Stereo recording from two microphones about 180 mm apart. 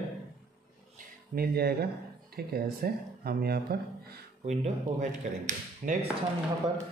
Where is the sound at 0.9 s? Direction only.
55° right (ahead or behind).